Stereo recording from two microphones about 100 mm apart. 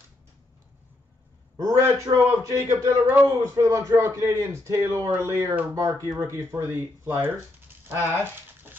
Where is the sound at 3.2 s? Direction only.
30° right (ahead or behind).